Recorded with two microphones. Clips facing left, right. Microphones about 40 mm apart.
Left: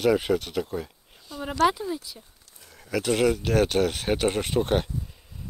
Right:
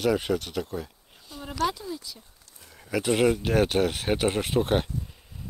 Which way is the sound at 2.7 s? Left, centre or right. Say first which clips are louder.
Even; centre.